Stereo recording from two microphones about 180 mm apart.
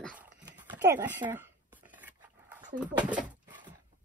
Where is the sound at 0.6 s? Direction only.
25° right (ahead or behind).